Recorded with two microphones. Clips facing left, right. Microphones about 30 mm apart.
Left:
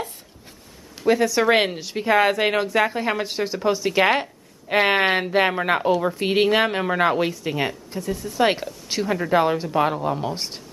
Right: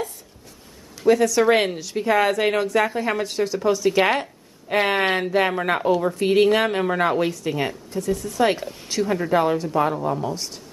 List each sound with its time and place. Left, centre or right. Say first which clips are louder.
1.0 s a woman's voice: right 2 dB; centre
5.6 s speech: even; centre
6.0 s a woman's voice: right 2 dB; centre
10.0 s speech: even; left